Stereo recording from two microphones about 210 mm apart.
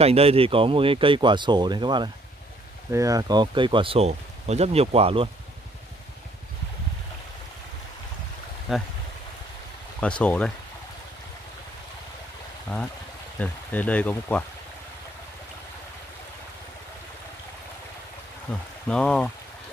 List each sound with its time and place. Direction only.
0.0 s speech: 30° right (ahead or behind)
8.7 s speech: centre (ahead or behind)
9.9 s speech: 5° left (ahead or behind)
12.7 s speech: 10° left (ahead or behind)
18.9 s speech: 5° left (ahead or behind)